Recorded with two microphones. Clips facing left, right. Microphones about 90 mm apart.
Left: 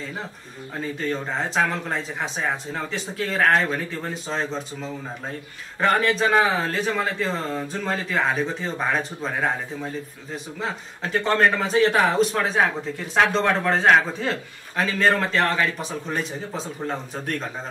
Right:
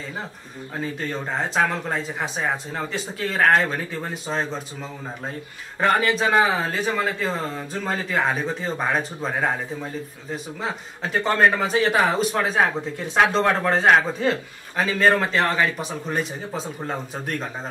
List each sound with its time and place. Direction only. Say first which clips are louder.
1.5 s speech: right 1 dB; 5° right (ahead or behind)
5.8 s speech: even; 5° right (ahead or behind)